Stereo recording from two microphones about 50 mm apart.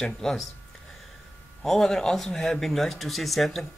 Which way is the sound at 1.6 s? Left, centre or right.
Centre.